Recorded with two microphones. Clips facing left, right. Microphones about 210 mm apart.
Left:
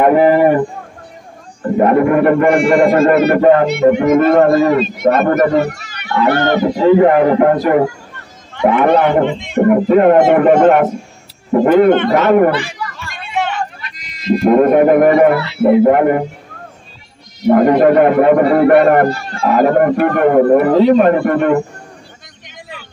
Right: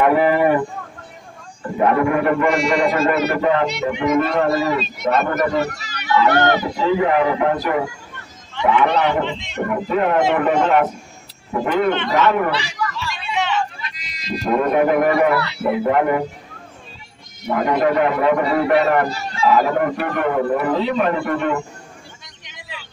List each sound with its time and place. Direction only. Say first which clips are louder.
0.0 s speech: left 6 dB; 45° left (ahead or behind)
1.8 s a man's voice: left 6 dB; 50° left (ahead or behind)
17.5 s a man's voice: left 9 dB; 50° left (ahead or behind)
22.5 s a sound: left 4 dB; 50° left (ahead or behind)